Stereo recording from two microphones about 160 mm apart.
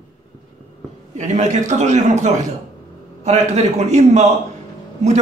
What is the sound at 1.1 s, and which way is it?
A man's voice, 45° right (ahead or behind).